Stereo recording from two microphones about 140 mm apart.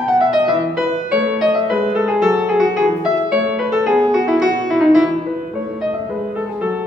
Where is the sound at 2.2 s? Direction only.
20° right (ahead or behind).